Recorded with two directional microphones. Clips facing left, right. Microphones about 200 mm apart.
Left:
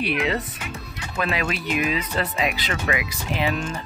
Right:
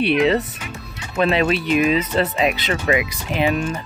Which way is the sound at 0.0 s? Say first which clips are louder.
Right 7 dB; 30° right (ahead or behind).